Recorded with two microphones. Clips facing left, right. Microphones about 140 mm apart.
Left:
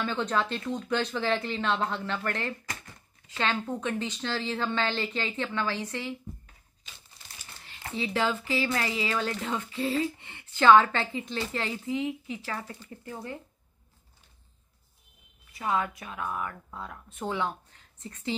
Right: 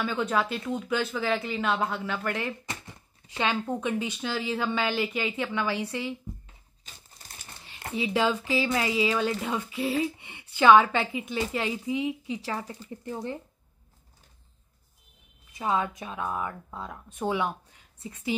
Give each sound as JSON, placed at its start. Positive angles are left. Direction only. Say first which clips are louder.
{"t": 0.0, "sound": "speech", "louder": "right 1 dB", "side_deg": -5}
{"t": 2.6, "sound": "a sound", "louder": "right 2 dB", "side_deg": -25}
{"t": 3.3, "sound": "speech", "louder": "right 2 dB", "side_deg": -10}
{"t": 7.6, "sound": "speech", "louder": "right 3 dB", "side_deg": -15}
{"t": 15.5, "sound": "speech", "louder": "right 2 dB", "side_deg": -20}